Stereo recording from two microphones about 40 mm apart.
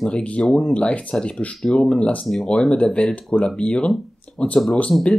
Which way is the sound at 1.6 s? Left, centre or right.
Centre.